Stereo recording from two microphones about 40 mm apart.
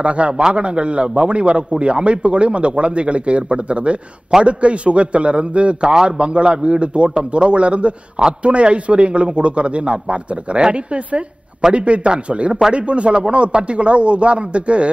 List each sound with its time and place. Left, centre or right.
0.0 s a man's voice: right